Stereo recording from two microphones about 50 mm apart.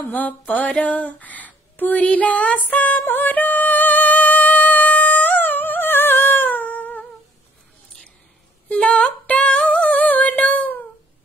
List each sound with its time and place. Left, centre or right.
0.1 s female singing: left
3.0 s music: left
8.6 s female singing: left
9.6 s a sound: left